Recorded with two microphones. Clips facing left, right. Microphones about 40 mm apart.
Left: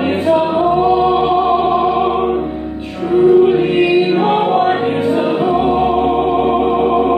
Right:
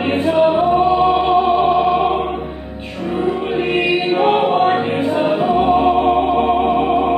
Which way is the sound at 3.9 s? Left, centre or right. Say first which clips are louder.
Left 2 dB; centre.